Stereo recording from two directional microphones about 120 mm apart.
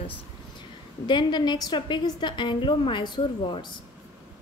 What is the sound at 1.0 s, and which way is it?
A woman's voice, 40° left (ahead or behind).